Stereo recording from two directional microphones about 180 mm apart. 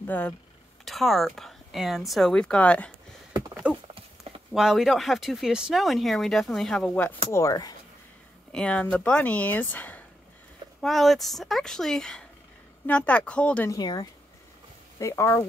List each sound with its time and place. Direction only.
0.0 s speech: 10° left (ahead or behind)
3.6 s clip-clop: 10° right (ahead or behind)
4.2 s speech: centre (ahead or behind)
7.3 s speech: 20° left (ahead or behind)
8.5 s speech: 5° left (ahead or behind)
13.7 s speech: 20° left (ahead or behind)